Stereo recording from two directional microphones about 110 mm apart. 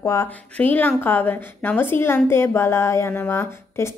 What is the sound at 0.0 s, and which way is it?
Speech, 30° left (ahead or behind).